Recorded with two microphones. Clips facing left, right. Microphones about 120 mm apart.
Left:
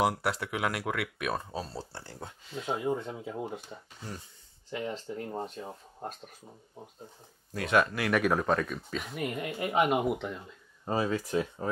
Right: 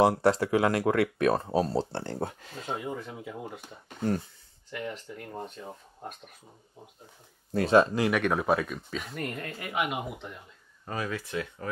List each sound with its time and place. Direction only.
0.0 s speech: 30° right (ahead or behind)
1.5 s speech: 55° right (ahead or behind)
2.1 s speech: 50° right (ahead or behind)
2.8 s speech: 25° left (ahead or behind)
3.9 s speech: 55° right (ahead or behind)
4.6 s speech: 25° left (ahead or behind)
7.5 s speech: 30° right (ahead or behind)
8.1 s speech: centre (ahead or behind)
9.4 s speech: 20° left (ahead or behind)
9.8 s speech: 45° left (ahead or behind)
10.0 s speech: 65° left (ahead or behind)
10.9 s speech: 25° left (ahead or behind)